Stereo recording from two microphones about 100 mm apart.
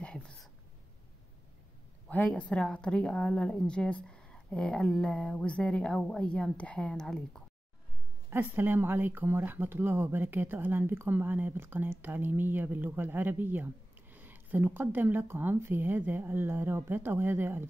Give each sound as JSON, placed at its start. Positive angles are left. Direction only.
{"t": 0.0, "sound": "a sound", "side_deg": 10}
{"t": 2.0, "sound": "a woman's voice", "side_deg": 15}
{"t": 8.3, "sound": "speech", "side_deg": -20}